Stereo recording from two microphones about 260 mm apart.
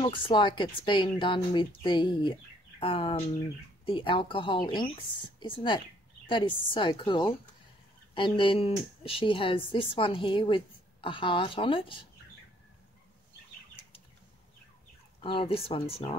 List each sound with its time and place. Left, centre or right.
0.0 s a woman's voice: centre
15.2 s a woman's voice: left